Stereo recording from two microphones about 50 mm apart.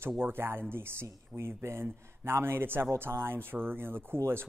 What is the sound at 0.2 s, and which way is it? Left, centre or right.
A man's voice, right.